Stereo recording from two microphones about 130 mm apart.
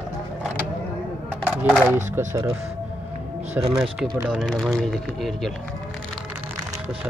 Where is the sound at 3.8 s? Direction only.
Centre (ahead or behind).